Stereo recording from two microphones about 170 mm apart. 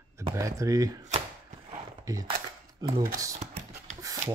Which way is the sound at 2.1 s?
20° right (ahead or behind).